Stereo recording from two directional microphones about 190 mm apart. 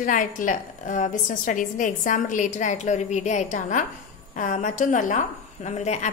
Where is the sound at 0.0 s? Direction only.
45° left (ahead or behind).